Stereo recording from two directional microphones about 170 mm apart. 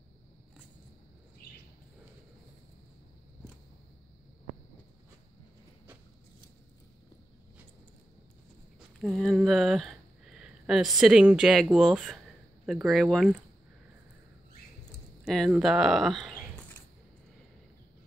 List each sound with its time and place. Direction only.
1.4 s a sound: 65° left (ahead or behind)
9.0 s speech: centre (ahead or behind)
15.2 s speech: centre (ahead or behind)